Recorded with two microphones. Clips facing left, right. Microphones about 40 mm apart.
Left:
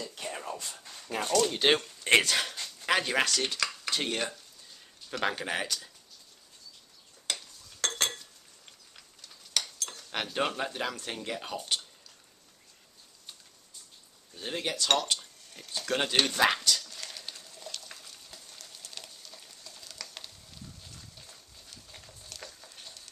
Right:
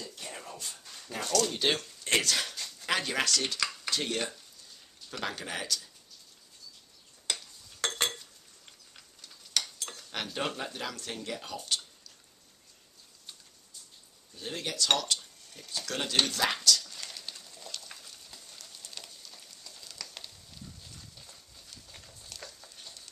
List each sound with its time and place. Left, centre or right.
0.3 s a sound: left
1.1 s speech: centre
5.2 s speech: left
7.3 s a sound: centre
7.8 s chink: centre
8.9 s cutlery: centre
10.1 s speech: centre
14.3 s speech: centre
16.8 s a sound: centre
20.9 s horse: centre
21.9 s stir: centre